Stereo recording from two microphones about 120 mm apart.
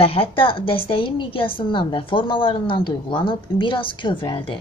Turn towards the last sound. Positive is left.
turn(degrees=40)  # may be behind; listen again after turning